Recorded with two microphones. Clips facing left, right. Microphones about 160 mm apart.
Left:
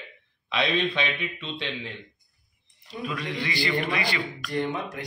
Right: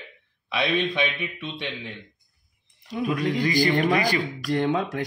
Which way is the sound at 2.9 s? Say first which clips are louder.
Right 7 dB; 50° right (ahead or behind).